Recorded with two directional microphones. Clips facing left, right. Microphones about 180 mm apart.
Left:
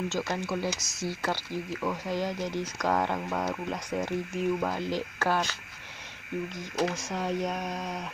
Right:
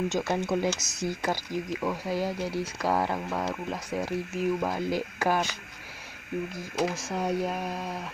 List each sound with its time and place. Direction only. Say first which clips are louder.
0.3 s speech: right 4 dB; 20° right (ahead or behind)